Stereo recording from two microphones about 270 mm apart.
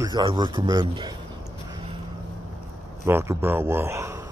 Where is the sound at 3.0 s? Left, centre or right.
Centre.